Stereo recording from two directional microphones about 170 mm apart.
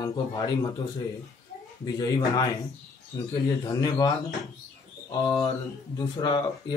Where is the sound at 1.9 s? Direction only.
20° left (ahead or behind).